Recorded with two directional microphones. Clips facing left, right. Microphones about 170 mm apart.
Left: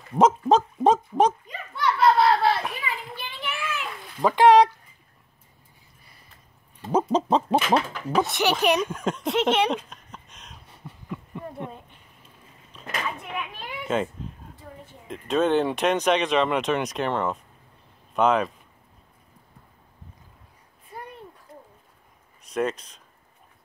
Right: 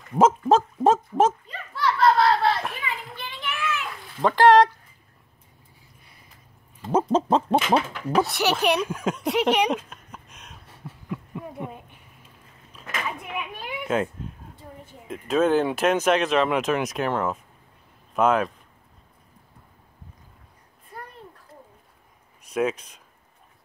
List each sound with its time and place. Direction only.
0.1 s dog: 5° right (ahead or behind)
1.5 s a sound: 20° left (ahead or behind)
2.4 s children playing: centre (ahead or behind)
4.2 s speech: centre (ahead or behind)
6.9 s speech: 5° right (ahead or behind)
8.5 s a sound: 10° right (ahead or behind)
13.4 s a sound: 5° right (ahead or behind)
15.0 s speech: 5° right (ahead or behind)
22.4 s speech: 5° right (ahead or behind)